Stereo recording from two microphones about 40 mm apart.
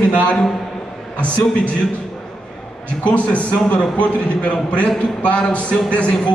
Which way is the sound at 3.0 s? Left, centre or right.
Left.